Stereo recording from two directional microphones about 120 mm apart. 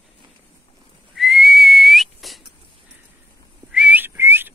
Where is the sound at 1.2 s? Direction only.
Centre (ahead or behind).